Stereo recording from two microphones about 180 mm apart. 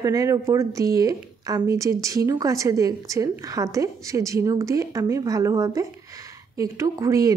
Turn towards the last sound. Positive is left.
turn(degrees=-20)  # may be behind; listen again after turning